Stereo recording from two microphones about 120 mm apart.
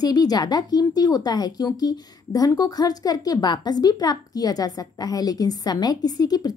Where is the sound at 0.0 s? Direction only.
35° left (ahead or behind).